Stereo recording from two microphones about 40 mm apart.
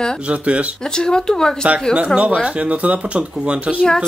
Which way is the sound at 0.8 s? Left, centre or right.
Centre.